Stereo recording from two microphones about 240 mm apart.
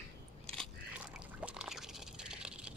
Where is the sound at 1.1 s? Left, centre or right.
Centre.